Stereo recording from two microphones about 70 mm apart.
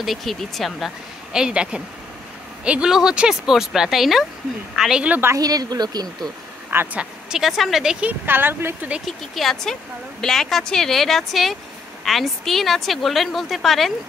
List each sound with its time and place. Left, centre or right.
0.0 s a woman's voice: centre
5.4 s speech: right
6.7 s speech: right
7.0 s speech: centre
8.0 s speech: right
9.0 s a woman's voice: centre